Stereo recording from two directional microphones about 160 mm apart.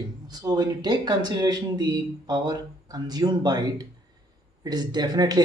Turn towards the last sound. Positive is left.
turn(degrees=-25)  # may be behind; listen again after turning